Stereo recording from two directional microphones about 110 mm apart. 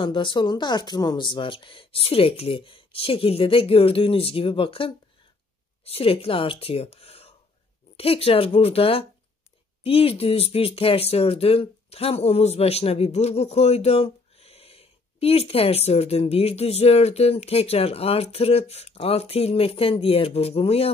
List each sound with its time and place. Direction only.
0.0 s speech: 45° left (ahead or behind); by 20.9 s 65° left (ahead or behind)